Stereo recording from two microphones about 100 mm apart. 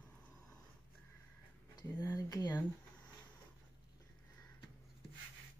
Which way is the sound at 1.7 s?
40° left (ahead or behind).